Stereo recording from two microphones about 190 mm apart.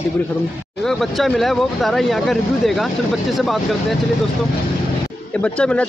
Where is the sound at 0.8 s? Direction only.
Centre (ahead or behind).